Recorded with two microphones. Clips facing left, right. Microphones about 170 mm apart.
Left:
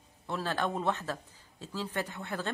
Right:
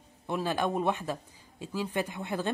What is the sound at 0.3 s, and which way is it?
A woman's voice, 15° right (ahead or behind).